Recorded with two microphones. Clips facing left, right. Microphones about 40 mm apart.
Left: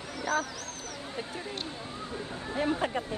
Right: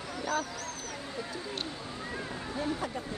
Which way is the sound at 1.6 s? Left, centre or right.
Right.